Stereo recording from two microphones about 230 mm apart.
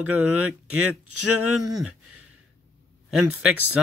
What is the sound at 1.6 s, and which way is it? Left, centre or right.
Speech, centre.